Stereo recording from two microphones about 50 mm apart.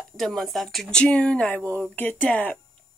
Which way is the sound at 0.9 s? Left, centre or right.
Centre.